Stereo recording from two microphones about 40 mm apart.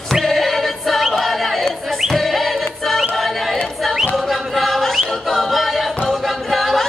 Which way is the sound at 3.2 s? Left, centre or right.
Centre.